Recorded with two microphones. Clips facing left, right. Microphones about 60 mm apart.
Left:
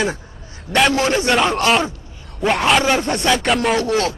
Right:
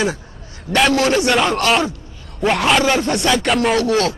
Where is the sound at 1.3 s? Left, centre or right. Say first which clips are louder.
Even; centre.